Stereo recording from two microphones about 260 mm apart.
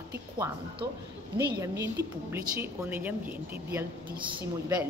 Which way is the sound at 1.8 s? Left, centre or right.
Centre.